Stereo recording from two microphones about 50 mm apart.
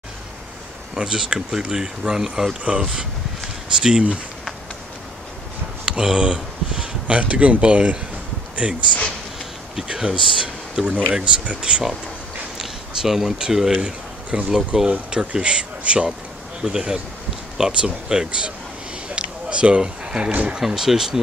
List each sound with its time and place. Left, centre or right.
0.9 s speech: centre
5.9 s speech: centre
9.8 s speech: centre
12.5 s speech: centre
19.1 s a sound: right
20.3 s speech: right
20.6 s speech: centre